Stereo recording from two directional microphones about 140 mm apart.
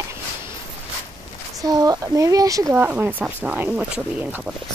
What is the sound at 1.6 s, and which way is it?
Speech, 25° right (ahead or behind).